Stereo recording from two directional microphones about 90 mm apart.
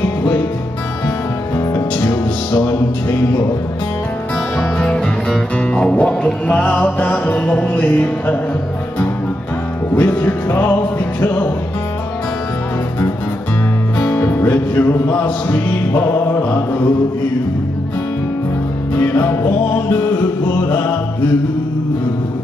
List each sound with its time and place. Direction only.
1.6 s music: 30° left (ahead or behind)
4.7 s music: 10° left (ahead or behind)
9.9 s music: 20° left (ahead or behind)
13.9 s music: 20° left (ahead or behind)
18.9 s music: 25° left (ahead or behind)